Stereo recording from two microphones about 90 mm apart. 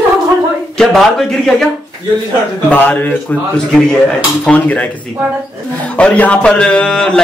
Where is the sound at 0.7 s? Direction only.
5° left (ahead or behind).